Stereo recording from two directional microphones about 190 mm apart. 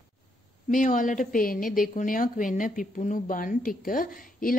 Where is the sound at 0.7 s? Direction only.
40° left (ahead or behind).